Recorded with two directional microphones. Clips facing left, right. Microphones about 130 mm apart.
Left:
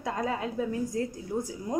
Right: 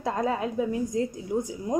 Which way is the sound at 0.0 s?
25° right (ahead or behind).